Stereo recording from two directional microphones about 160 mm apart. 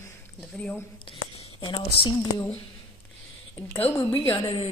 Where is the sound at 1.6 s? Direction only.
30° left (ahead or behind).